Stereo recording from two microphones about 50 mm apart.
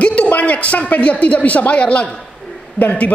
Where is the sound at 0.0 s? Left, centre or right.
Left.